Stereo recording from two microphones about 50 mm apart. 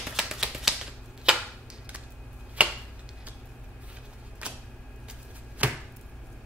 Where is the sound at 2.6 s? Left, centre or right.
Right.